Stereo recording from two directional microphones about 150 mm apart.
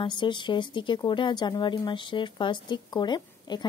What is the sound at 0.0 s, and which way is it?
Speech, 30° left (ahead or behind).